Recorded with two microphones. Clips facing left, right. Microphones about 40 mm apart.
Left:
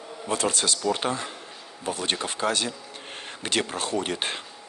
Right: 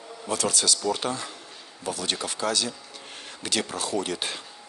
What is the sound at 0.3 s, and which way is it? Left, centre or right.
Speech, left.